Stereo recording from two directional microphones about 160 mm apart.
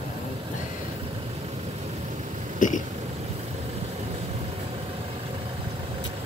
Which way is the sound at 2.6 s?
55° left (ahead or behind).